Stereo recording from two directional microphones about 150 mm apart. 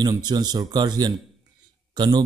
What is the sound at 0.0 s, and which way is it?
Speech, 30° right (ahead or behind).